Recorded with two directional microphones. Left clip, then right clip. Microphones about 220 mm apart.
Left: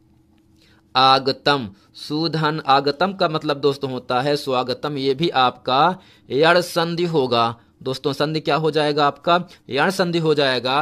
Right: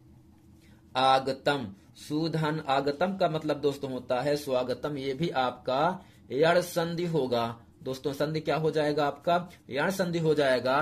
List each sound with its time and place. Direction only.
0.9 s speech: 50° left (ahead or behind)